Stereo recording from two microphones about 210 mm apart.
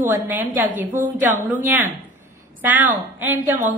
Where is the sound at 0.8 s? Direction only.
40° right (ahead or behind).